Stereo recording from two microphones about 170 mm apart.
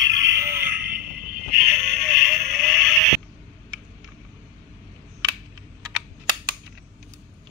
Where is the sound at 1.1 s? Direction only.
60° right (ahead or behind).